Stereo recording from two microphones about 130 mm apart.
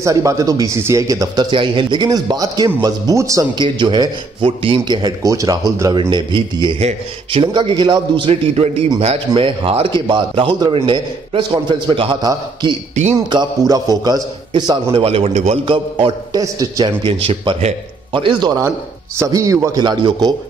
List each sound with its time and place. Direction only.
0.0 s speech: 25° right (ahead or behind)
3.5 s a man's voice: 40° right (ahead or behind)
5.9 s a man's voice: 40° right (ahead or behind)
6.8 s a man's voice: 55° right (ahead or behind)
7.5 s a man's voice: 40° right (ahead or behind)
13.3 s a man's voice: 30° right (ahead or behind); by 15.6 s 55° right (ahead or behind)
15.6 s a man's voice: 40° right (ahead or behind)
16.3 s speech: 25° right (ahead or behind)
17.0 s a man's voice: 40° right (ahead or behind)
19.1 s speech: 25° right (ahead or behind)